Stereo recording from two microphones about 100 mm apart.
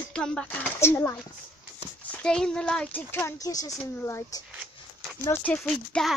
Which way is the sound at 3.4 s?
35° left (ahead or behind).